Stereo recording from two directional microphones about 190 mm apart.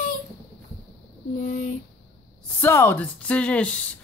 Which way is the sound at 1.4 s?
40° left (ahead or behind).